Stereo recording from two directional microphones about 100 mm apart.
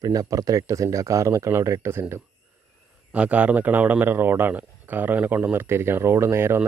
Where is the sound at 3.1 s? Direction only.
15° right (ahead or behind).